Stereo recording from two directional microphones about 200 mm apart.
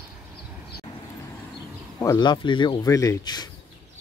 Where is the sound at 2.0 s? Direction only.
20° left (ahead or behind).